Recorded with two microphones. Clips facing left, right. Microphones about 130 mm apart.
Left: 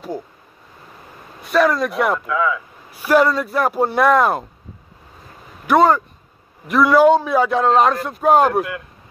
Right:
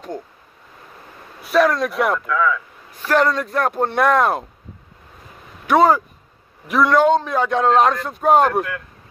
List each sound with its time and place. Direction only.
1.4 s a man's voice: centre (ahead or behind)
2.1 s speech: 20° left (ahead or behind)
2.9 s a man's voice: 10° left (ahead or behind)
5.7 s a man's voice: centre (ahead or behind)